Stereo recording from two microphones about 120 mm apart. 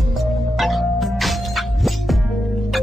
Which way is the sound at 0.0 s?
Centre (ahead or behind).